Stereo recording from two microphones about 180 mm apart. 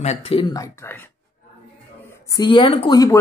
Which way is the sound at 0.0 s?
35° left (ahead or behind).